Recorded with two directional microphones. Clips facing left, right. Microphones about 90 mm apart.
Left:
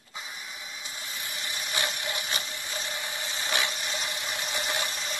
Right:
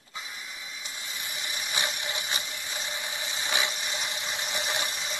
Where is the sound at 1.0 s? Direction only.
20° right (ahead or behind).